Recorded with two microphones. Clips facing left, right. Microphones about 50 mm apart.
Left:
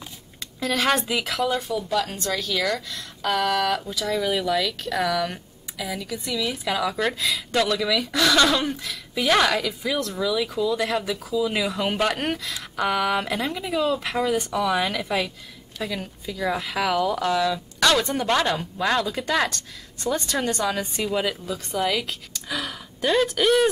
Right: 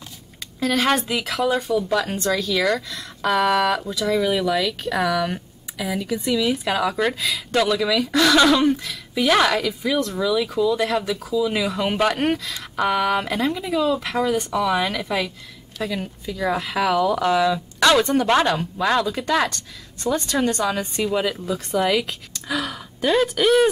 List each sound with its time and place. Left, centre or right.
0.6 s speech: centre
1.1 s a woman's voice: centre
1.9 s speech: centre
4.1 s a woman's voice: centre
17.3 s a woman's voice: centre